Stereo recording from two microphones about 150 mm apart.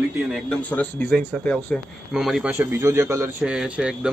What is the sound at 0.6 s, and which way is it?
A man's voice, 10° left (ahead or behind).